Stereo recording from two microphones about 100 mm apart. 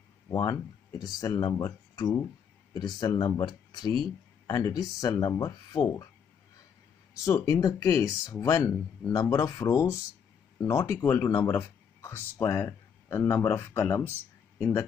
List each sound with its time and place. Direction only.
0.3 s speech: 45° left (ahead or behind)
2.7 s speech: 45° left (ahead or behind)
7.2 s speech: 35° left (ahead or behind)